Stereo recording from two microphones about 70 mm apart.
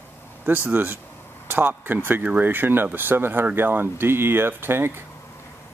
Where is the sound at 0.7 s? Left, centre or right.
Right.